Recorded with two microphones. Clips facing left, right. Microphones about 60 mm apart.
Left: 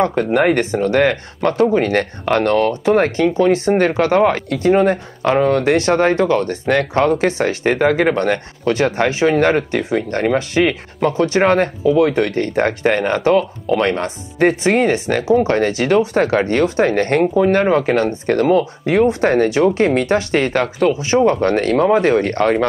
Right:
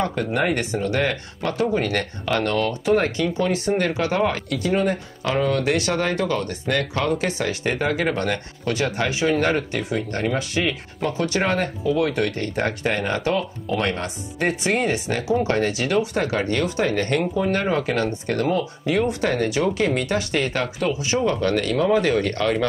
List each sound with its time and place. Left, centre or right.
0.0 s speech: left